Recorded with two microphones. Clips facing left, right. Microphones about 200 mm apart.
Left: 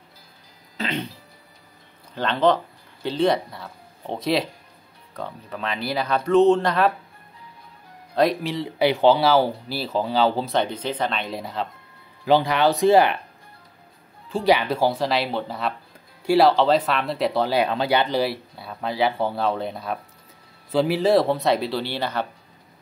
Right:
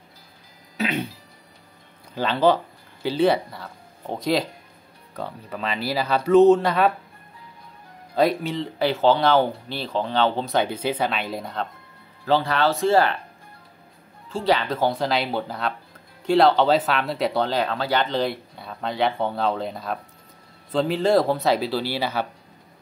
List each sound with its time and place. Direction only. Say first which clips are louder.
0.7 s speech: right 2 dB; 10° right (ahead or behind)
2.1 s speech: right 1 dB; 5° right (ahead or behind)
8.1 s speech: even; centre (ahead or behind)
8.5 s speech: left 2 dB; 15° left (ahead or behind)
12.3 s speech: left 2 dB; 15° left (ahead or behind)
14.3 s speech: left 2 dB; 15° left (ahead or behind); by 22.3 s 5° right (ahead or behind)